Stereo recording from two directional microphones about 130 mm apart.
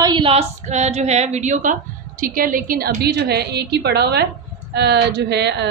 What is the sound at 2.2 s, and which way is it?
Speech, 90° right.